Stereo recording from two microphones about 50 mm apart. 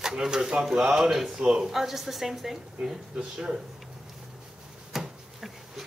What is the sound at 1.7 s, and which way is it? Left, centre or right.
A woman's voice, centre.